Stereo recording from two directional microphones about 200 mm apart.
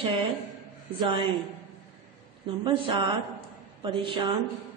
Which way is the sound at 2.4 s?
25° right (ahead or behind).